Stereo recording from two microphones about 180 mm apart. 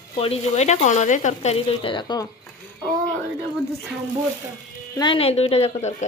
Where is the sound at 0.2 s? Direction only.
35° left (ahead or behind).